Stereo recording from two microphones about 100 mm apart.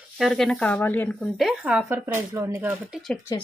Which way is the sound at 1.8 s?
25° right (ahead or behind).